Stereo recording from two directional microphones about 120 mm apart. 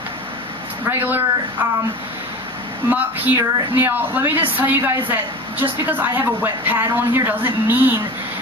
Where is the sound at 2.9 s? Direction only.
15° right (ahead or behind).